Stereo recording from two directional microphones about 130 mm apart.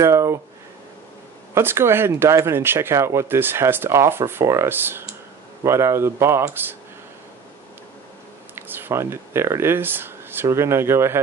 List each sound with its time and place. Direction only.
0.0 s a sound: 20° right (ahead or behind)
1.5 s speech: 20° right (ahead or behind)
8.5 s speech: 15° right (ahead or behind)